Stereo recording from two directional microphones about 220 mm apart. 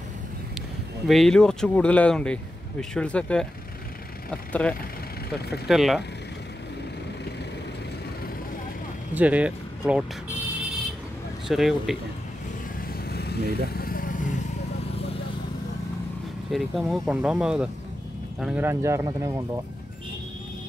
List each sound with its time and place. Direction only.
1.0 s speech: centre (ahead or behind)
9.1 s speech: 5° right (ahead or behind)
11.4 s speech: centre (ahead or behind)
13.1 s vehicle: 45° left (ahead or behind)
16.5 s speech: centre (ahead or behind)